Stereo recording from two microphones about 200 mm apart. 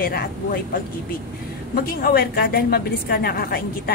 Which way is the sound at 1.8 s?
50° left (ahead or behind).